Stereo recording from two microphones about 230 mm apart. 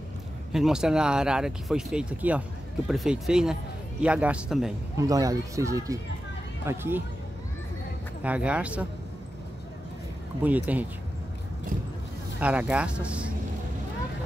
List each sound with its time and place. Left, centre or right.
0.5 s speech: centre
4.9 s speech: centre
8.2 s speech: centre
10.4 s speech: centre
12.4 s speech: centre